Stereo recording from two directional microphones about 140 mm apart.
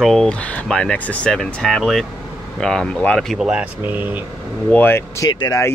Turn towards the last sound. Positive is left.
turn(degrees=25)  # may be behind; listen again after turning